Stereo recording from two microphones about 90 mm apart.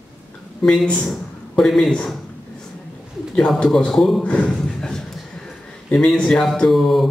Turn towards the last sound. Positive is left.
turn(degrees=0)  # may be behind; listen again after turning